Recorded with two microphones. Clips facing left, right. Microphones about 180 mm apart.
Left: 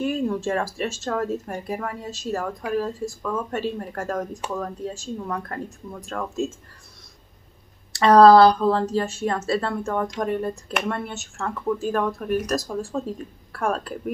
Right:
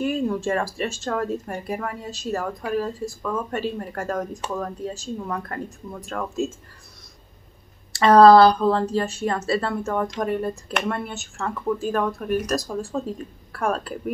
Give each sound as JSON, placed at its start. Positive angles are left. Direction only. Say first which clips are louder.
{"t": 0.0, "sound": "speech", "louder": "right 1 dB", "side_deg": 0}
{"t": 7.9, "sound": "speech", "louder": "even", "side_deg": 0}